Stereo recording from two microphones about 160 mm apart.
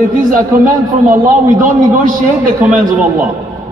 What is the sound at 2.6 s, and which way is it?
Speech, 10° right (ahead or behind).